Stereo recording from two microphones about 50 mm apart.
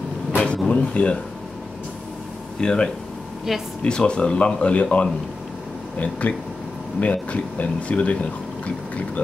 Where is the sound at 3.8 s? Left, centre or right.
Centre.